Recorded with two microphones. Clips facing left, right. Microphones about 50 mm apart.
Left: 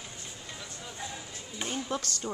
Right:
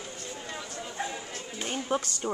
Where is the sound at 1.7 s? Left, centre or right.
Right.